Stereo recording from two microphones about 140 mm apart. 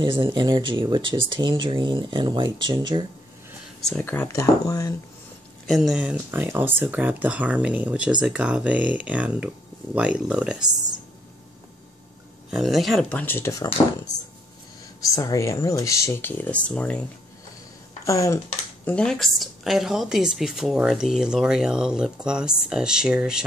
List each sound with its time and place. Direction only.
0.0 s speech: 35° right (ahead or behind)
4.0 s speech: 15° left (ahead or behind)
5.7 s speech: centre (ahead or behind)
12.4 s speech: centre (ahead or behind)
13.2 s speech: 15° left (ahead or behind)
15.1 s speech: 25° left (ahead or behind); by 17.0 s 10° left (ahead or behind)
18.0 s speech: 20° left (ahead or behind)
18.9 s speech: 5° left (ahead or behind)